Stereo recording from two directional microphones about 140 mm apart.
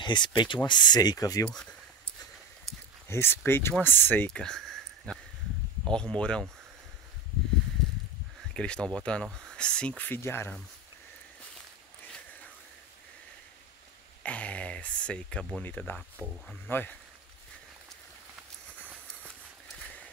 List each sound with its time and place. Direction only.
0.0 s speech: 35° left (ahead or behind)
1.5 s a sound: 5° left (ahead or behind)
3.1 s speech: 15° left (ahead or behind)
8.5 s speech: 5° left (ahead or behind)
14.2 s speech: 10° left (ahead or behind)
19.7 s a sound: 10° left (ahead or behind)